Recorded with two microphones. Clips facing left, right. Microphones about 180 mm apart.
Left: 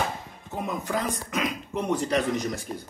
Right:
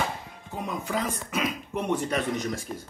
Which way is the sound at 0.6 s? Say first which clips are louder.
Left 1 dB; 5° right (ahead or behind).